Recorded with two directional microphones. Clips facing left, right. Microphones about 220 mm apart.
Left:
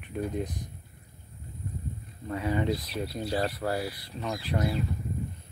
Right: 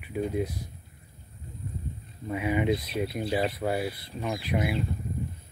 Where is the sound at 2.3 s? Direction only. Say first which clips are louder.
Right 2 dB; 15° right (ahead or behind).